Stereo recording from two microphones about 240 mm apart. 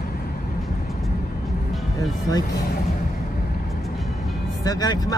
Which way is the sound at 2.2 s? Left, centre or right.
Centre.